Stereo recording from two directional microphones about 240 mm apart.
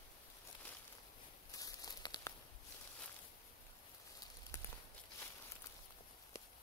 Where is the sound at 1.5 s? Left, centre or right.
Centre.